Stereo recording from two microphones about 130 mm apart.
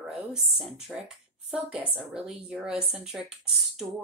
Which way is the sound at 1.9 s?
5° right (ahead or behind).